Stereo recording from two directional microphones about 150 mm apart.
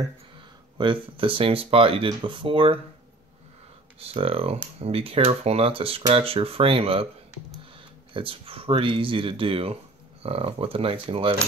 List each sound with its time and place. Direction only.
0.7 s speech: 35° right (ahead or behind)
4.0 s speech: 40° right (ahead or behind)
8.1 s speech: 35° right (ahead or behind)